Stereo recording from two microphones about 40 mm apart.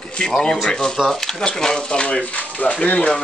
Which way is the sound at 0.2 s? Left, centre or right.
Centre.